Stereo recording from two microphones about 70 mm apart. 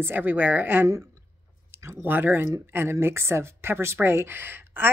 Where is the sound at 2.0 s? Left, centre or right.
Right.